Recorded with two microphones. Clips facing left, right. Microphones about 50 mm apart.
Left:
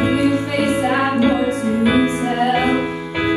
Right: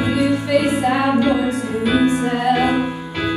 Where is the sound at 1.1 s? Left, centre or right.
Centre.